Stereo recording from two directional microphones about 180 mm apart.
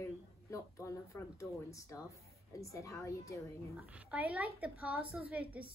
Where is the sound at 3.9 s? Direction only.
5° right (ahead or behind).